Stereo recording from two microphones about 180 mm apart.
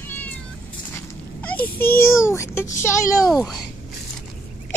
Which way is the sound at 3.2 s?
Centre (ahead or behind).